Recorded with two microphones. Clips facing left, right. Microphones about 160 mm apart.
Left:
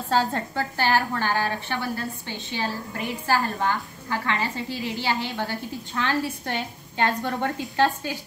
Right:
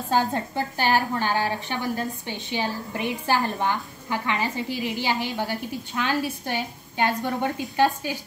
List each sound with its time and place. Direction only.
0.1 s a woman's voice: 15° right (ahead or behind)